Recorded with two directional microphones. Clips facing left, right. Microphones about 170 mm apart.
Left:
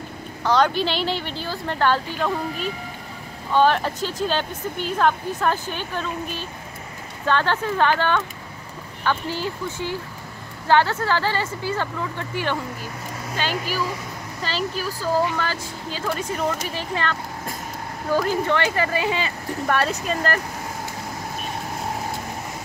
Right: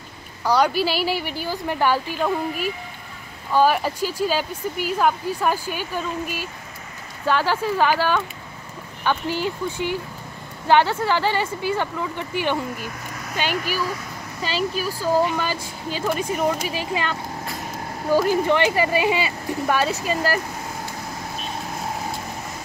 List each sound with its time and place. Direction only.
0.4 s speech: 10° right (ahead or behind)